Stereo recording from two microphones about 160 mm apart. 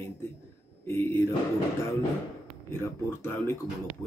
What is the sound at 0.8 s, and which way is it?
Speech, 15° left (ahead or behind).